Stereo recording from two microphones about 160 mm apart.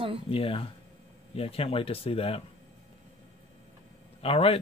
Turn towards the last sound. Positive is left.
turn(degrees=35)  # may be behind; listen again after turning